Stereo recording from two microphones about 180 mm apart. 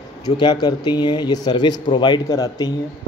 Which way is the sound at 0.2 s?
20° left (ahead or behind).